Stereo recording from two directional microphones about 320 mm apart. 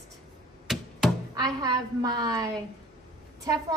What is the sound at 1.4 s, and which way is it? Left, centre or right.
A woman's voice, centre.